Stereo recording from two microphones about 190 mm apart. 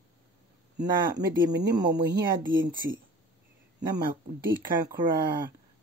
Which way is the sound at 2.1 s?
50° right (ahead or behind).